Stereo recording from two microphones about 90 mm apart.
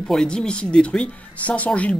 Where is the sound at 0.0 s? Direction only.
10° left (ahead or behind).